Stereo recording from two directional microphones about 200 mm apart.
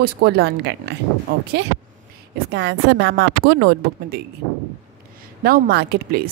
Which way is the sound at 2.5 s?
55° right (ahead or behind).